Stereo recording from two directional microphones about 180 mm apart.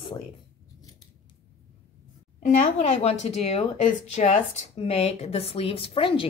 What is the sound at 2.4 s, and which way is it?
A woman's voice, 40° left (ahead or behind).